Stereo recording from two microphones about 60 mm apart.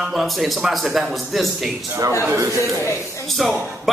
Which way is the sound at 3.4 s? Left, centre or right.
Centre.